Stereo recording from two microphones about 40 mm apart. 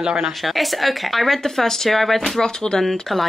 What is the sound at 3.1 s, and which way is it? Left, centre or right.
Speech, centre.